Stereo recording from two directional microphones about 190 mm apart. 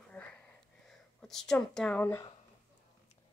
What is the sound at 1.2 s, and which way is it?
Speech, centre (ahead or behind).